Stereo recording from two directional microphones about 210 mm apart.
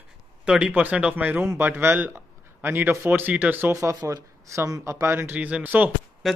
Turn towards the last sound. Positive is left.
turn(degrees=-10)  # may be behind; listen again after turning